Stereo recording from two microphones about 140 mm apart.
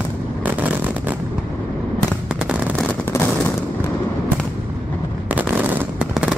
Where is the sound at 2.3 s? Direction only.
5° right (ahead or behind).